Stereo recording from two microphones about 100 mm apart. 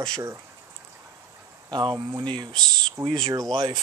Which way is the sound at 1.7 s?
45° right (ahead or behind).